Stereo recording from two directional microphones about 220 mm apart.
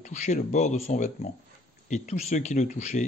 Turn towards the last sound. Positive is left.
turn(degrees=30)  # may be behind; listen again after turning